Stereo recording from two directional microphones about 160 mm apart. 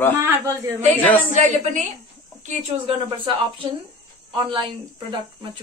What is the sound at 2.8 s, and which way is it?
Speech, 30° right (ahead or behind).